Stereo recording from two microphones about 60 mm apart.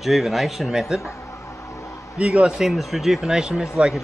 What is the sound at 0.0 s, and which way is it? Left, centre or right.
Speech, centre.